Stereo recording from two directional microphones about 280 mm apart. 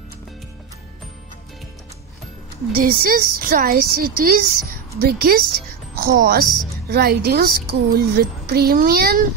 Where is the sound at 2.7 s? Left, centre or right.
Right.